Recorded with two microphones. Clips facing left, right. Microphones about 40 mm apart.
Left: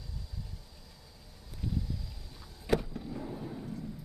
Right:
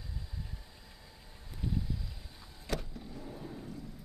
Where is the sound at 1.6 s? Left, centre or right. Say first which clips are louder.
Even; centre.